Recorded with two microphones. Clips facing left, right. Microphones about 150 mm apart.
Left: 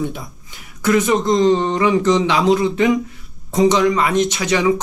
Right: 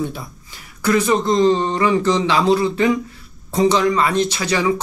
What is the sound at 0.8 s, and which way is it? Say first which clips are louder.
Speech: left 1 dB; 20° left (ahead or behind).